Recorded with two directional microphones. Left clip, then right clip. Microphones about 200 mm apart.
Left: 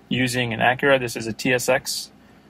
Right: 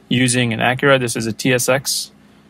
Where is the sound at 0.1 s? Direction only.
50° right (ahead or behind).